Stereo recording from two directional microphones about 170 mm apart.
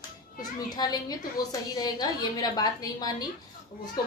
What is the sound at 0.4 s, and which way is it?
A woman's voice, 25° left (ahead or behind).